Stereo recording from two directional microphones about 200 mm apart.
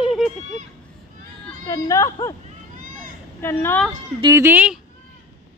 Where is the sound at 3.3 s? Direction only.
10° left (ahead or behind).